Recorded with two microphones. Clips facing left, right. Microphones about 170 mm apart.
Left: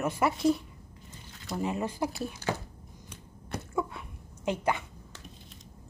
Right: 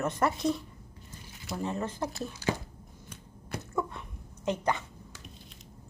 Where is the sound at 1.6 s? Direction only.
15° left (ahead or behind).